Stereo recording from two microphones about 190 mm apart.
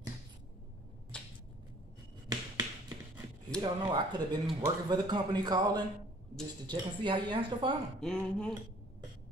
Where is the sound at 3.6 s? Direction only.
20° right (ahead or behind).